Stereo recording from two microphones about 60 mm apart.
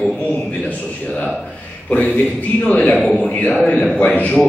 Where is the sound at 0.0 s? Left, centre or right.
Left.